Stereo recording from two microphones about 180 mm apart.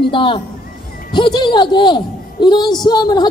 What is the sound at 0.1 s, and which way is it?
A man's voice, 30° left (ahead or behind).